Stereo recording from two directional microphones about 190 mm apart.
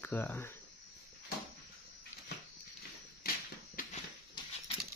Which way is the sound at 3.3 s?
50° left (ahead or behind).